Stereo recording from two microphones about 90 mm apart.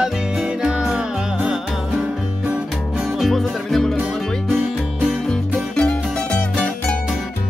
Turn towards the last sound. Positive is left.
turn(degrees=15)  # may be behind; listen again after turning